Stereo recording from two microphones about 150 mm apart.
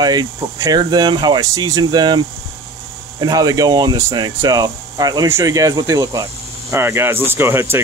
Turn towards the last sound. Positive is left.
turn(degrees=-15)  # may be behind; listen again after turning